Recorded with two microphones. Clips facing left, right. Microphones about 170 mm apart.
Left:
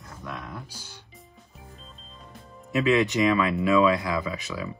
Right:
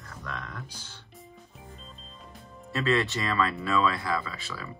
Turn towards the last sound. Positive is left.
turn(degrees=15)  # may be behind; listen again after turning